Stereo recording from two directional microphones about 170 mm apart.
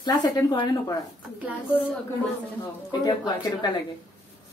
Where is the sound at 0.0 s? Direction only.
25° left (ahead or behind).